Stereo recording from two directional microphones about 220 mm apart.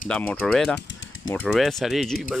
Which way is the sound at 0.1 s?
5° left (ahead or behind).